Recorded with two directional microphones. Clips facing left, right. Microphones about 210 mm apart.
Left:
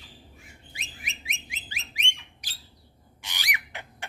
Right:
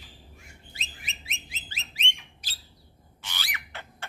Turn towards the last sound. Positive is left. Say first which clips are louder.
# left 1 dB
turn(degrees=15)  # may be behind; listen again after turning